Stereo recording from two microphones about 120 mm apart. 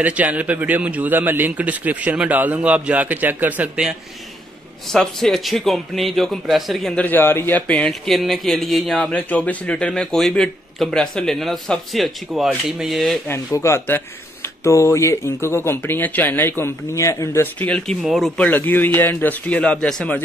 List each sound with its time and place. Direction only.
0.0 s speech: 10° right (ahead or behind)
4.9 s a man's voice: 5° left (ahead or behind)
7.0 s a man's voice: 15° left (ahead or behind); by 13.2 s centre (ahead or behind)
13.3 s speech: 25° left (ahead or behind); by 17.9 s 10° left (ahead or behind)
18.0 s a man's voice: centre (ahead or behind)
18.4 s a man's voice: 15° left (ahead or behind)